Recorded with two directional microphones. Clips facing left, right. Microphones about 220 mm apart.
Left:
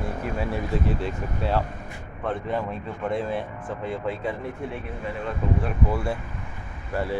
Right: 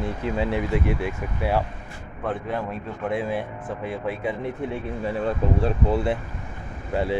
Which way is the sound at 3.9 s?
10° right (ahead or behind).